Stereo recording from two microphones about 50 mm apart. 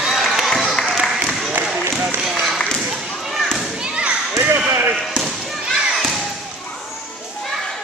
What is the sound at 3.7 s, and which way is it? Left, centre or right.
Children playing, centre.